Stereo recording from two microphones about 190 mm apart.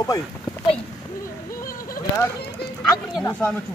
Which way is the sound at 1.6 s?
50° left (ahead or behind).